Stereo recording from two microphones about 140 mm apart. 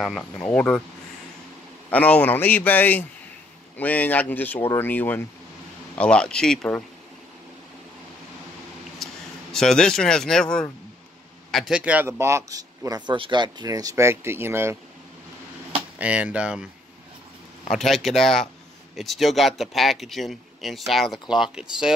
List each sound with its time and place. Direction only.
0.0 s speech: 5° left (ahead or behind)
1.9 s speech: 10° left (ahead or behind)
9.0 s speech: 5° left (ahead or behind); by 14.8 s 20° right (ahead or behind)
16.0 s speech: 10° right (ahead or behind)
17.6 s speech: centre (ahead or behind)